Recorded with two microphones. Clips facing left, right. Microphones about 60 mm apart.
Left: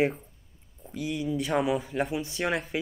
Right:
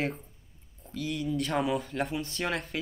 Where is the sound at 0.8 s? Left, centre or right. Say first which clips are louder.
Left 2 dB; centre.